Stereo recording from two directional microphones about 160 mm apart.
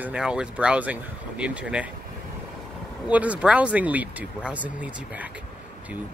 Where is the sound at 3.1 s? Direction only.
10° right (ahead or behind).